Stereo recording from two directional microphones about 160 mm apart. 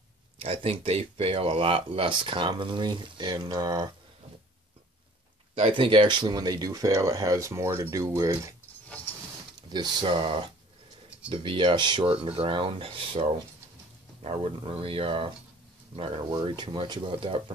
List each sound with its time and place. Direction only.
0.4 s speech: 35° right (ahead or behind)
5.5 s speech: 30° right (ahead or behind)
9.6 s speech: 25° right (ahead or behind)